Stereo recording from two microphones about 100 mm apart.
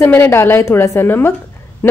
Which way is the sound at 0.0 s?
25° left (ahead or behind).